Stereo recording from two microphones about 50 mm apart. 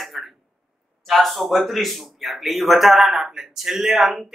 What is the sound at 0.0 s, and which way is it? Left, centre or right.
Throat clearing, centre.